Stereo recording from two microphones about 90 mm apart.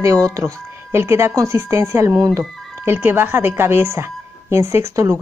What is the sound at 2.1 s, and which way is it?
Speech, 45° right (ahead or behind).